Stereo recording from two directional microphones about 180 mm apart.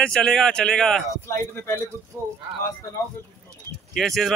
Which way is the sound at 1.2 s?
15° left (ahead or behind).